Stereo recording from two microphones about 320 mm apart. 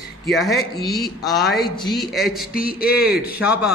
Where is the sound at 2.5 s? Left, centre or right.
Left.